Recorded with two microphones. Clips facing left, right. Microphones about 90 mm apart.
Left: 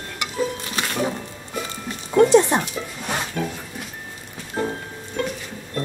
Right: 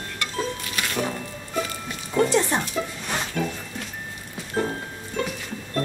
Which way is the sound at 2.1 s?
20° left (ahead or behind).